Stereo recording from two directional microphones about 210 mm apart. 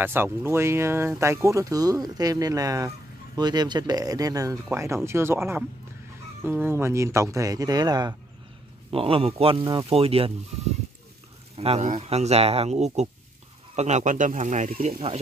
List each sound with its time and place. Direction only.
0.0 s a man's voice: 10° right (ahead or behind); by 10.3 s 25° right (ahead or behind)
11.5 s speech: 30° right (ahead or behind)